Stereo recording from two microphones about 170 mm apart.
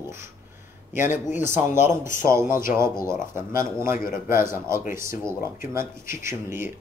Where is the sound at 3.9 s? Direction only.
55° left (ahead or behind).